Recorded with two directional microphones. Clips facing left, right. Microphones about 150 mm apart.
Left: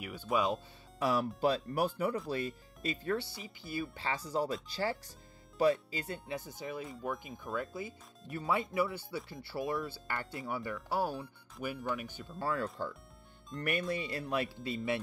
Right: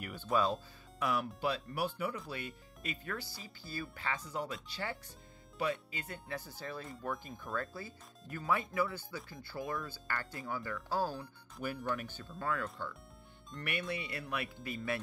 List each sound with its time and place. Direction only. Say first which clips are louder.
0.0 s speech: even; 10° left (ahead or behind)
0.9 s speech: left 4 dB; 35° left (ahead or behind); by 6.9 s 15° left (ahead or behind)
6.9 s speech: left 2 dB; centre (ahead or behind)
7.8 s speech: left 5 dB; 20° left (ahead or behind)
11.1 s speech: left 2 dB; centre (ahead or behind)
12.4 s speech: left 2 dB; 30° left (ahead or behind)
13.6 s speech: left 5 dB; 40° left (ahead or behind)